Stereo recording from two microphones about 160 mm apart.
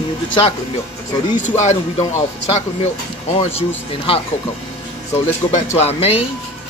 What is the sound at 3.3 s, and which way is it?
Speech, 35° left (ahead or behind).